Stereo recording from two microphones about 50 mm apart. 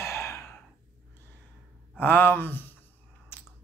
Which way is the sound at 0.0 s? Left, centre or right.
Left.